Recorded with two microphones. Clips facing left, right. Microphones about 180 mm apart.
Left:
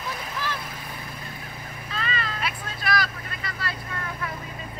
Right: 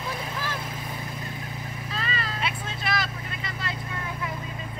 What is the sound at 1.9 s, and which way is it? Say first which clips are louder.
Vehicle: left 2 dB; 35° right (ahead or behind).